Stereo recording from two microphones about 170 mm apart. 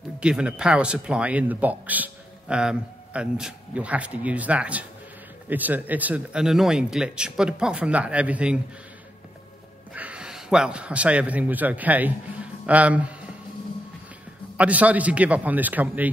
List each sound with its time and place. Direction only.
0.2 s speech: 5° right (ahead or behind)
9.9 s a man's voice: 5° right (ahead or behind)
14.6 s speech: 10° right (ahead or behind)